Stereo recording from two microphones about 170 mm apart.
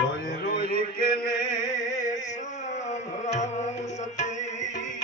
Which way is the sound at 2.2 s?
45° left (ahead or behind).